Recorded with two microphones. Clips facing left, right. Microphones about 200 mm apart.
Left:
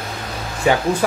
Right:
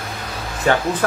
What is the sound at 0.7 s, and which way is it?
Speech, 10° left (ahead or behind).